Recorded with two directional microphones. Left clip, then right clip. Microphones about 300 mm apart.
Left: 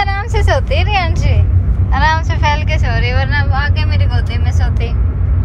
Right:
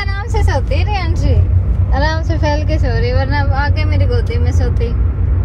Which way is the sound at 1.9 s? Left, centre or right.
Centre.